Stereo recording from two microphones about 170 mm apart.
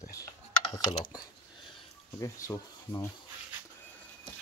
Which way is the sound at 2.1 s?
20° left (ahead or behind).